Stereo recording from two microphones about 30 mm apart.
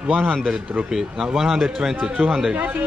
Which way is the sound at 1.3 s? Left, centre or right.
Centre.